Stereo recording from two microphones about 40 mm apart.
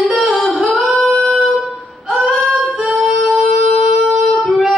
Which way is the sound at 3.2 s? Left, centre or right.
Right.